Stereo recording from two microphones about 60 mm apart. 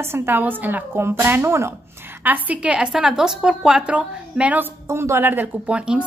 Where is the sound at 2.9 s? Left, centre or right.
Centre.